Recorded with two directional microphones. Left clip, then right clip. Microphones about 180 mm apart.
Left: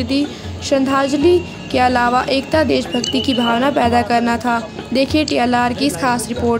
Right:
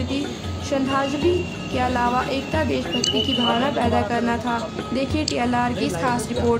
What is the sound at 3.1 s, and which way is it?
Music, 35° left (ahead or behind).